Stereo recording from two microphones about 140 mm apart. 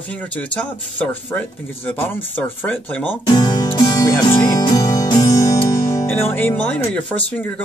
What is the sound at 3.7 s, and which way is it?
Music, 25° left (ahead or behind).